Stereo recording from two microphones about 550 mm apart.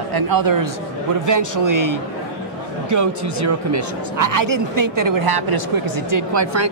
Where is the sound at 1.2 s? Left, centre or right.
Right.